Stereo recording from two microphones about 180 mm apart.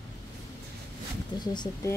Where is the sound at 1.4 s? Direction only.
25° left (ahead or behind).